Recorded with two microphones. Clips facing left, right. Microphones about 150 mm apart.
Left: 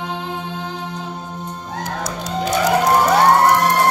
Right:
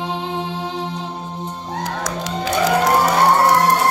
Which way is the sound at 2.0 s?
90° right.